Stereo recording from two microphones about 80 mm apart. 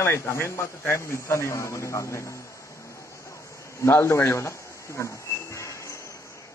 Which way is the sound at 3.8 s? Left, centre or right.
Left.